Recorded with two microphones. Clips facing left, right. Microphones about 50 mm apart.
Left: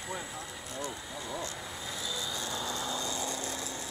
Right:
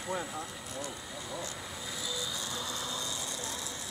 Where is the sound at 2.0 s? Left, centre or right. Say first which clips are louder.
Left 1 dB; centre.